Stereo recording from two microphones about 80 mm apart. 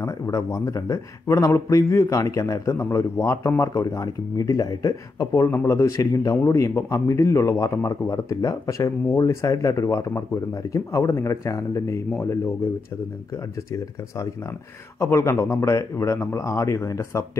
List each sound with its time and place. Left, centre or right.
0.0 s a man's voice: left
5.3 s a man's voice: left
15.0 s a man's voice: left